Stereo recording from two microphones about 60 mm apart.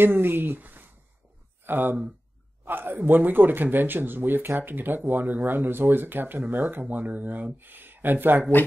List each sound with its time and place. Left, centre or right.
0.0 s speech: right